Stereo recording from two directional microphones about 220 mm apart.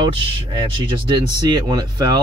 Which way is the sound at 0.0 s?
20° right (ahead or behind).